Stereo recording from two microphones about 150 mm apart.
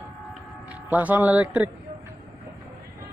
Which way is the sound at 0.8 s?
10° right (ahead or behind).